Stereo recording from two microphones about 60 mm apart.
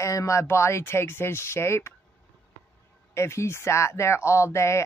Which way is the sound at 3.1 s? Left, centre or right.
Left.